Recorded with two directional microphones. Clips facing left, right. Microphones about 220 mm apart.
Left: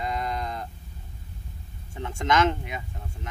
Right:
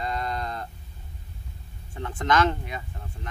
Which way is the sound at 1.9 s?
15° left (ahead or behind).